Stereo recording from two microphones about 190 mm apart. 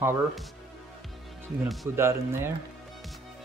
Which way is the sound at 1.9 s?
15° right (ahead or behind).